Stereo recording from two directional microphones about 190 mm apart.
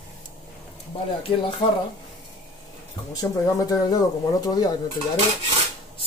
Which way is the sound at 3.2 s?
20° left (ahead or behind).